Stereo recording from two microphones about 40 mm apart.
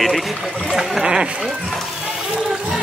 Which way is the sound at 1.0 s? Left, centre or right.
Centre.